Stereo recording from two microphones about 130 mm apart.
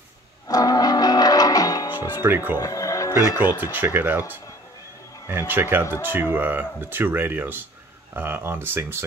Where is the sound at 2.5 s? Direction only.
25° left (ahead or behind).